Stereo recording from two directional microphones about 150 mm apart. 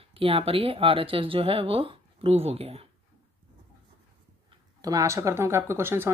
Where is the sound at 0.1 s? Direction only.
40° right (ahead or behind).